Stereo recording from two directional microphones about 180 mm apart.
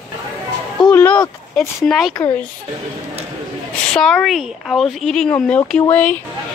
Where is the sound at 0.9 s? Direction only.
10° left (ahead or behind).